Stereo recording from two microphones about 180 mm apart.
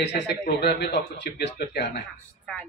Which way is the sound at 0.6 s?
65° left (ahead or behind).